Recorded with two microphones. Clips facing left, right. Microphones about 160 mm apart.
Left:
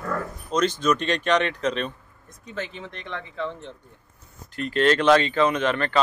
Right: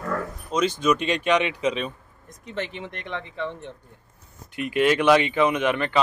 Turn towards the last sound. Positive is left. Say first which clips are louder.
# even
turn(degrees=-15)  # may be behind; listen again after turning